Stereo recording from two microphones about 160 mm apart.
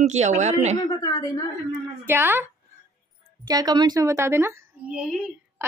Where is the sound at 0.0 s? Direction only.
45° right (ahead or behind).